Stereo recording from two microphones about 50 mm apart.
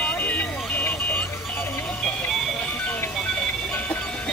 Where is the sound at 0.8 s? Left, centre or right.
Left.